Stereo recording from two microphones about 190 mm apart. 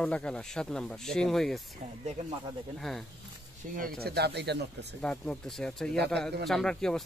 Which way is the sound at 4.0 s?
55° right (ahead or behind).